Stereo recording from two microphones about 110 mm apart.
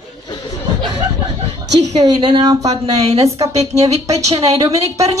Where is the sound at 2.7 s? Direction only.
70° right (ahead or behind).